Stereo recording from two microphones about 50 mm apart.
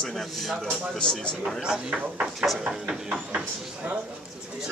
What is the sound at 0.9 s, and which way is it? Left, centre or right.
Speech, centre.